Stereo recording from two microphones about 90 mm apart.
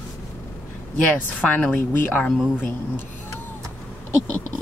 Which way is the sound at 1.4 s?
15° left (ahead or behind).